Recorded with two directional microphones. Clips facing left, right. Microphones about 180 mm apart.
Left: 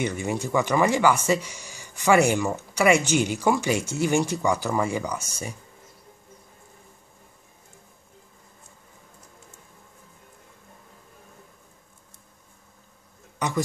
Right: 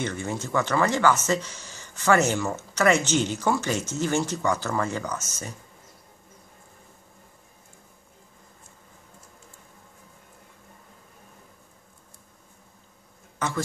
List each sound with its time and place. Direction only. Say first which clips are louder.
0.0 s speech: left 3 dB; 15° left (ahead or behind)
13.4 s a man's voice: left 1 dB; 15° left (ahead or behind)